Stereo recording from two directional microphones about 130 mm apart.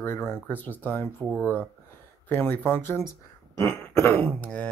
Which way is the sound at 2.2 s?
15° left (ahead or behind).